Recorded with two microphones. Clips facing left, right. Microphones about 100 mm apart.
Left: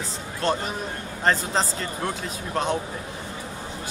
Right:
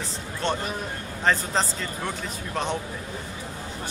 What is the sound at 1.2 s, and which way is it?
Speech, centre (ahead or behind).